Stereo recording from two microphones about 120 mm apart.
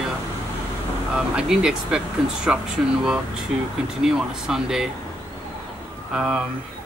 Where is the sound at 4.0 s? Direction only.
5° right (ahead or behind).